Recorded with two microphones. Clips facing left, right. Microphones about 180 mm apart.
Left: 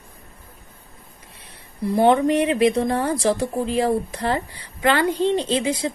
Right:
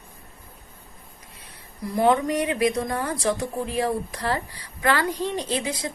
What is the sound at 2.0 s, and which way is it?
A woman's voice, 25° left (ahead or behind).